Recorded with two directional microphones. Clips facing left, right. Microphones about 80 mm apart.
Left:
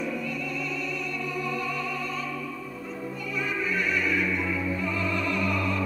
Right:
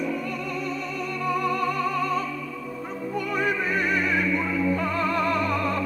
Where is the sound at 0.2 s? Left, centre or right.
Right.